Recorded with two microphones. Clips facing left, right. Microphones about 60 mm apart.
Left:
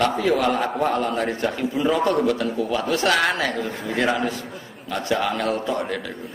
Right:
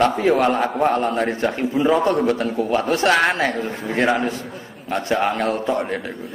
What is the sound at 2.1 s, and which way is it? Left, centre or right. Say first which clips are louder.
Speech: right 2 dB; right.